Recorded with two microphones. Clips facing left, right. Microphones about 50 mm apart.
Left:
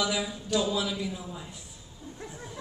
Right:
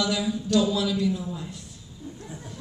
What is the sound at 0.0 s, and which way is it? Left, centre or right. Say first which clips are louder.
A man's voice: right 4 dB; centre.